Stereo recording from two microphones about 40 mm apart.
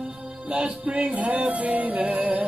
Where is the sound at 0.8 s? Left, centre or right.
Right.